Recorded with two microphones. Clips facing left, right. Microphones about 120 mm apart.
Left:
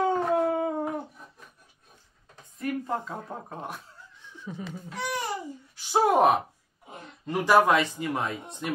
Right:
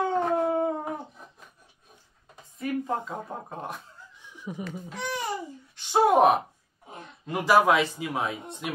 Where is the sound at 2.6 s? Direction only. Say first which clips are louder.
Right 1 dB; centre (ahead or behind).